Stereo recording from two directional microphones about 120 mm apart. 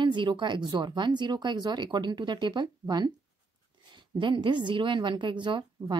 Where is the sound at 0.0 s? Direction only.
40° right (ahead or behind).